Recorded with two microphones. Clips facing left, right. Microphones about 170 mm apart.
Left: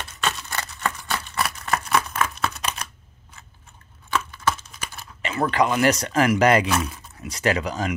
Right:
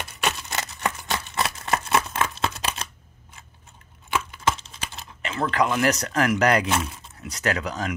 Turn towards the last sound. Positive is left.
turn(degrees=0)  # may be behind; listen again after turning